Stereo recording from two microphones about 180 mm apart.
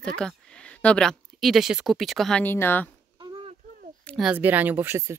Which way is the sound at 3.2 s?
25° right (ahead or behind).